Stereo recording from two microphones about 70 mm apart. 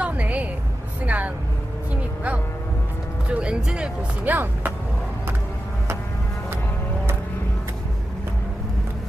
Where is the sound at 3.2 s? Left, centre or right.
Centre.